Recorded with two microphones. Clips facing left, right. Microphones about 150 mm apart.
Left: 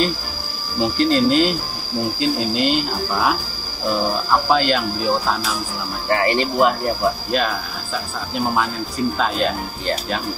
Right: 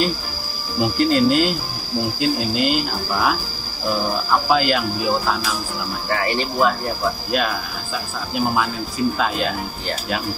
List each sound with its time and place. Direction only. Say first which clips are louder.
0.7 s speech: even; 5° right (ahead or behind)
4.5 s speech: right 1 dB; 5° right (ahead or behind)
6.2 s speech: left 2 dB; 20° left (ahead or behind)
7.2 s speech: left 1 dB; 5° right (ahead or behind)